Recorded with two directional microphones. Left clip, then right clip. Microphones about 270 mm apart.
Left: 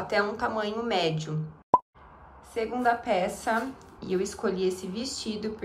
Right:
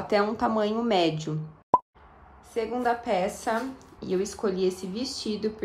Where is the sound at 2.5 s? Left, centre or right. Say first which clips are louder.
Left 1 dB; centre.